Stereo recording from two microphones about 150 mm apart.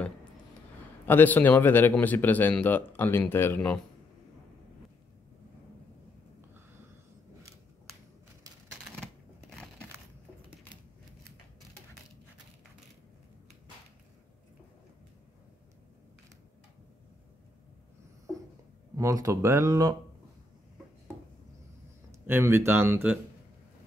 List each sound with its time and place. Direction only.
1.0 s a man's voice: 15° left (ahead or behind)
18.9 s speech: 25° right (ahead or behind)
22.2 s speech: 15° right (ahead or behind)